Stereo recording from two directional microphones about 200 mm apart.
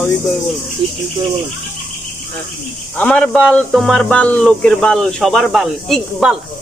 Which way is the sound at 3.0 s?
5° left (ahead or behind).